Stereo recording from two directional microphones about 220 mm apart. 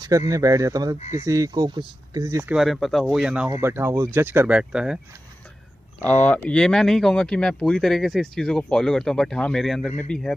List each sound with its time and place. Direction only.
0.3 s speech: 15° right (ahead or behind)
0.9 s speech: 30° left (ahead or behind)
1.2 s speech: 15° right (ahead or behind)
2.5 s speech: centre (ahead or behind)
6.0 s speech: 5° left (ahead or behind)